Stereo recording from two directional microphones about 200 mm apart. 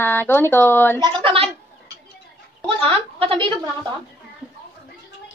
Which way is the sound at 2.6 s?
25° right (ahead or behind).